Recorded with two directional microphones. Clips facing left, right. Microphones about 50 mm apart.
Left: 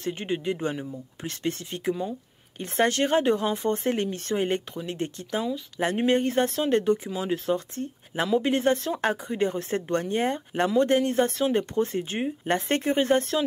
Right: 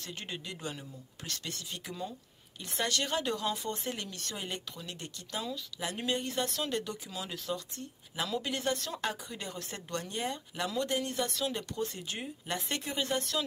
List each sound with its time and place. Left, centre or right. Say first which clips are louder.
0.0 s speech: left 13 dB; left